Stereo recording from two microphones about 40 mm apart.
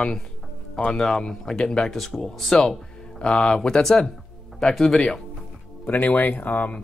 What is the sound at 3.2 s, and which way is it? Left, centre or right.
Speech, left.